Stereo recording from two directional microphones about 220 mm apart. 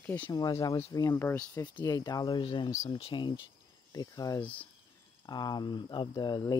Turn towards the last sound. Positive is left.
turn(degrees=20)  # may be behind; listen again after turning